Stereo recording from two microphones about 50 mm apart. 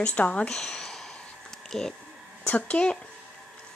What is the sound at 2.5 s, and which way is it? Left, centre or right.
Speech, left.